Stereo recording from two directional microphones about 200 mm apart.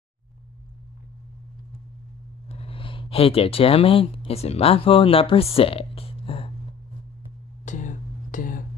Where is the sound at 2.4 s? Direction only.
30° left (ahead or behind).